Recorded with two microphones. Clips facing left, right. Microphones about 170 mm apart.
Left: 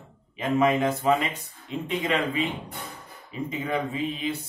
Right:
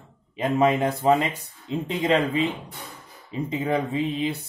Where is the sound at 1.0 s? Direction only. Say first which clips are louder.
Right 3 dB; 30° right (ahead or behind).